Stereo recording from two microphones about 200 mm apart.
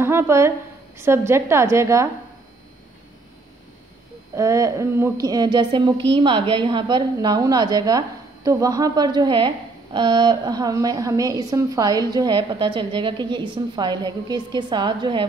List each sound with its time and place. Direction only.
0.0 s a woman's voice: 10° right (ahead or behind)
4.4 s a woman's voice: 15° right (ahead or behind)